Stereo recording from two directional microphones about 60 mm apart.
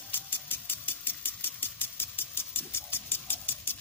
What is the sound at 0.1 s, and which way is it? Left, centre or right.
Engine, left.